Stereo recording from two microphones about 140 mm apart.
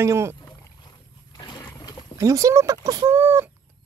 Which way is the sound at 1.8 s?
30° left (ahead or behind).